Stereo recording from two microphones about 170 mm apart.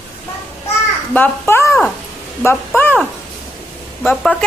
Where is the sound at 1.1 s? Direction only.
10° left (ahead or behind).